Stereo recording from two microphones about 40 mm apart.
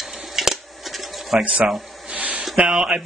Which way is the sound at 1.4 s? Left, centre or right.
Right.